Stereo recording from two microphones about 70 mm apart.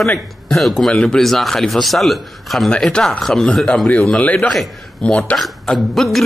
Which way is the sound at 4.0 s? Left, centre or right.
Centre.